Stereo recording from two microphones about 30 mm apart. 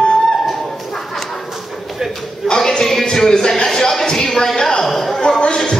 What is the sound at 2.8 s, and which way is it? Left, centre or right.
Music, centre.